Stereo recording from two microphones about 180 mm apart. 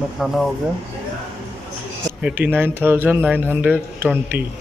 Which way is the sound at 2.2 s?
5° right (ahead or behind).